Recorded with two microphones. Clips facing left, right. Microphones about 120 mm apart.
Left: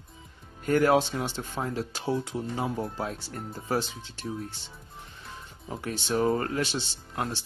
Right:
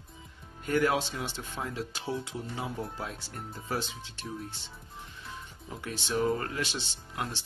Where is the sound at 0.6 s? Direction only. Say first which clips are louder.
Left 5 dB; 45° left (ahead or behind).